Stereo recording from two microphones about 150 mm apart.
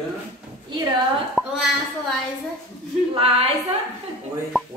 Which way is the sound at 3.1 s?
40° right (ahead or behind).